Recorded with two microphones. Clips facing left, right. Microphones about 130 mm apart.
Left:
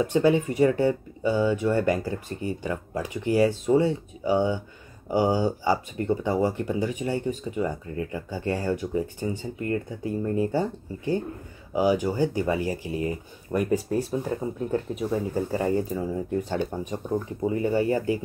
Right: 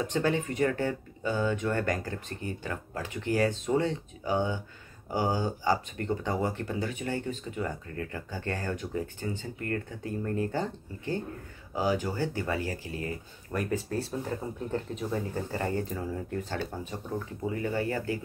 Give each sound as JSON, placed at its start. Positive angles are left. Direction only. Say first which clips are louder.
{"t": 0.0, "sound": "speech", "louder": "left 7 dB", "side_deg": 10}
{"t": 15.0, "sound": "speech", "louder": "left 7 dB", "side_deg": 15}
{"t": 17.4, "sound": "speech", "louder": "left 6 dB", "side_deg": 25}
{"t": 17.6, "sound": "speech", "louder": "left 7 dB", "side_deg": 15}